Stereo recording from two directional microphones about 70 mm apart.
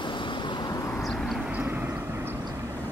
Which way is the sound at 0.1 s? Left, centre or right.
Left.